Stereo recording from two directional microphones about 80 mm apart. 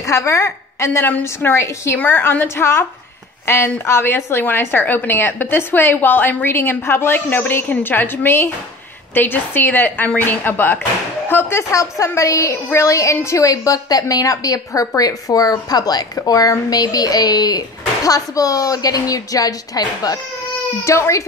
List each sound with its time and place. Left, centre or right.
0.0 s a woman's voice: left
11.7 s a woman's voice: left
20.8 s a woman's voice: left